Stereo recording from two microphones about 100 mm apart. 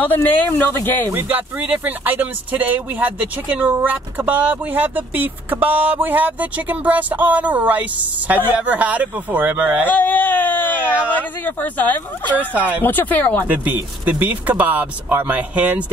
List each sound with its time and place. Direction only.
0.0 s speech: 20° left (ahead or behind)
1.1 s speech: 15° right (ahead or behind)
9.8 s speech: 15° left (ahead or behind)
13.5 s speech: 20° right (ahead or behind)